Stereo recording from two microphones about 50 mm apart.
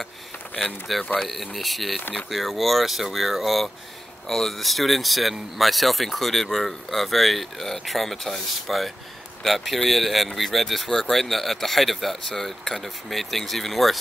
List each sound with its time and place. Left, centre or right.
0.6 s speech: centre